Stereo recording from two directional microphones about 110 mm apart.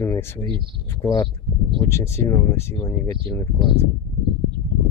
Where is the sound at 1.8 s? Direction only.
25° left (ahead or behind).